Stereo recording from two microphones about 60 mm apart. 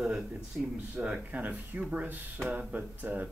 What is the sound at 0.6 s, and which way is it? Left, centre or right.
Speech, centre.